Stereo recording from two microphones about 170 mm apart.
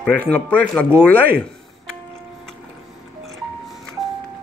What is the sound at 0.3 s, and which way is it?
Speech, 10° left (ahead or behind).